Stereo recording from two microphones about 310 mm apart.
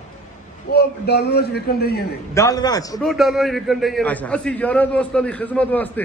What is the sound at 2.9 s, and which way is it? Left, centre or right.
A man's voice, centre.